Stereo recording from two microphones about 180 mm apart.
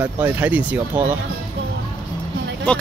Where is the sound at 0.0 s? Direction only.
10° right (ahead or behind).